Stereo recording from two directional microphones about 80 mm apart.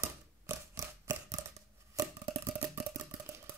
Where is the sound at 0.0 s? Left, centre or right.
Right.